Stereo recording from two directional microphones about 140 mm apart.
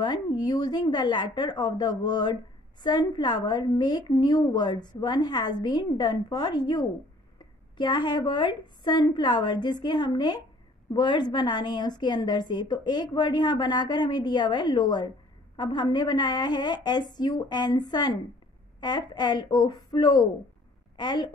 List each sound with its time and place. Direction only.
0.0 s a woman's voice: 30° left (ahead or behind)